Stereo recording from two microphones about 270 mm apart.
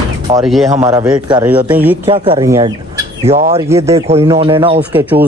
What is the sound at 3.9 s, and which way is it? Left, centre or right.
Speech, right.